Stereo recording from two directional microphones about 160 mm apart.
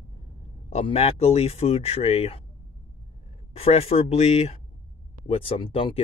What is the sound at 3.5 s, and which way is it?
Speech, 40° left (ahead or behind).